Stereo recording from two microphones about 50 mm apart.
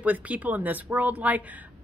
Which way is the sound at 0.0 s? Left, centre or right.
Right.